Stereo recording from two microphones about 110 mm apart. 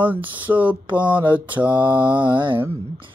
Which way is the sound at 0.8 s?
45° right (ahead or behind).